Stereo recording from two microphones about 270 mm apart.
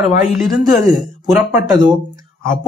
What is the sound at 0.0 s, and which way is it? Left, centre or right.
Speech, centre.